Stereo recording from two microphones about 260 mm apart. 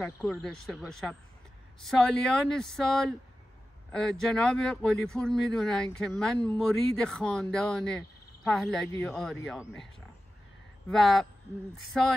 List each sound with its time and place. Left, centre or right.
0.0 s speech: centre
10.9 s speech: centre